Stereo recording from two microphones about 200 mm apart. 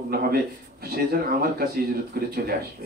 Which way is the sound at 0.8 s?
50° right (ahead or behind).